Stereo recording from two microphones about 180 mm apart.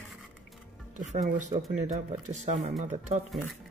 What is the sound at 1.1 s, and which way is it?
Speech, 40° right (ahead or behind).